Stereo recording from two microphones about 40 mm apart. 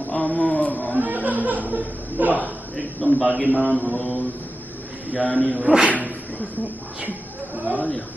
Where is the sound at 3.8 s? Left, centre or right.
Left.